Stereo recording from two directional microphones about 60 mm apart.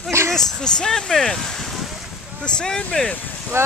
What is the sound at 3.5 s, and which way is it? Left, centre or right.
Speech, right.